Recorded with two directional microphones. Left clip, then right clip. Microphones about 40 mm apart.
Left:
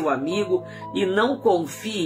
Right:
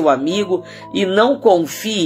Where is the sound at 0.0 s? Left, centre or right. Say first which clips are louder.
Right 8 dB; left.